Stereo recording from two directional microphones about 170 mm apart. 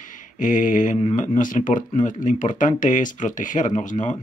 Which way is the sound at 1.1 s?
50° left (ahead or behind).